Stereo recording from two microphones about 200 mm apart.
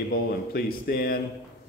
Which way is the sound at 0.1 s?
50° left (ahead or behind).